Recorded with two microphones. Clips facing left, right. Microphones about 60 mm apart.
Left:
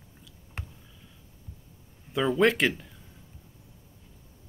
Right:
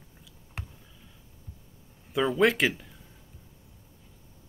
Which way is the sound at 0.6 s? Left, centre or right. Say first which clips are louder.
Even; centre.